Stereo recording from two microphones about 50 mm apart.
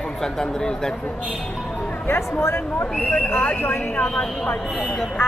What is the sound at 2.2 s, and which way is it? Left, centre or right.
Speech, left.